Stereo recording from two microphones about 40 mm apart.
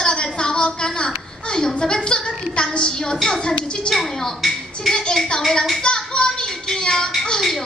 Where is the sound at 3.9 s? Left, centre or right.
Centre.